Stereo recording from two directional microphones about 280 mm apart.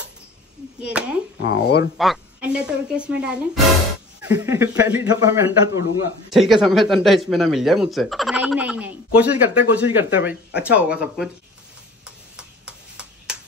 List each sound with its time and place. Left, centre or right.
0.9 s speech: centre
1.4 s speech: left
2.0 s speech: centre
6.3 s speech: centre
12.4 s tick-tock: centre